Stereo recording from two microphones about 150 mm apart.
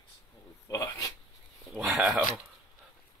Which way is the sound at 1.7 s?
Centre (ahead or behind).